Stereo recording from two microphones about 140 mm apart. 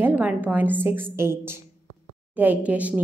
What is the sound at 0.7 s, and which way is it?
A woman's voice, 15° right (ahead or behind).